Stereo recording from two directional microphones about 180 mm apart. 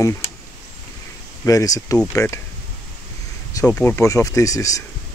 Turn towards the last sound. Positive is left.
turn(degrees=20)  # may be behind; listen again after turning